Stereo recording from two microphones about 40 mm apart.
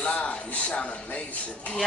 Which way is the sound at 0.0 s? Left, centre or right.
Left.